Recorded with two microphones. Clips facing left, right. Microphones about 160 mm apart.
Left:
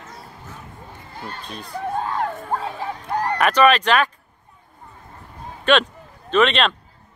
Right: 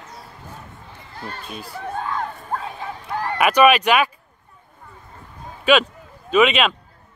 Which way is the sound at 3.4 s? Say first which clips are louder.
Right 2 dB; 10° right (ahead or behind).